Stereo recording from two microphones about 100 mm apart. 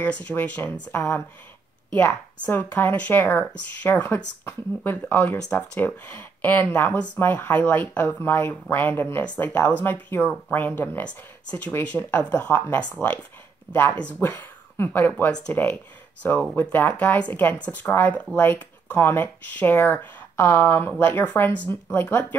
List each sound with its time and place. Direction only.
0.0 s speech: 15° left (ahead or behind)